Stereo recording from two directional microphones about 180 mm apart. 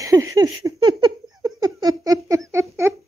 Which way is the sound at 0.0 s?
20° right (ahead or behind).